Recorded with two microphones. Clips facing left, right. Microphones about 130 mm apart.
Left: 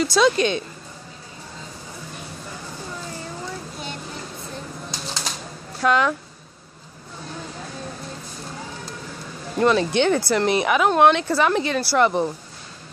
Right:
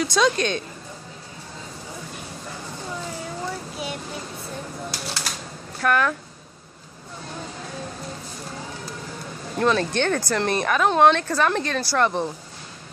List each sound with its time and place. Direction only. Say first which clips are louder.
0.0 s a woman's voice: left 3 dB; 5° left (ahead or behind)
3.7 s a sound: right 3 dB; 5° right (ahead or behind)
4.9 s typing: even; 20° left (ahead or behind)
5.8 s speech: left 2 dB; 15° left (ahead or behind)
9.6 s speech: left 3 dB; 10° left (ahead or behind)